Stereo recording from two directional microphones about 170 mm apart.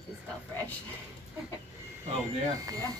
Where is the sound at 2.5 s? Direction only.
20° right (ahead or behind).